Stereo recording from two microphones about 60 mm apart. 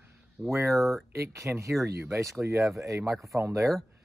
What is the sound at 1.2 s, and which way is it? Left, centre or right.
Speech, right.